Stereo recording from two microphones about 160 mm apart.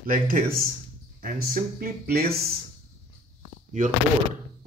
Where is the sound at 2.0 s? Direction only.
70° right (ahead or behind).